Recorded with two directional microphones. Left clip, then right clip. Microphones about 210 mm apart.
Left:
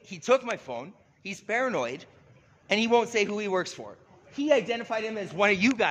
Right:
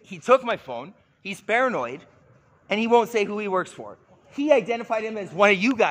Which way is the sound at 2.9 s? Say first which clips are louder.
Right 6 dB; 20° right (ahead or behind).